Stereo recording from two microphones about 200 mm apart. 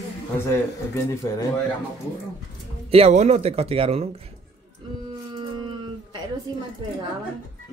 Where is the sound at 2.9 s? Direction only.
30° right (ahead or behind).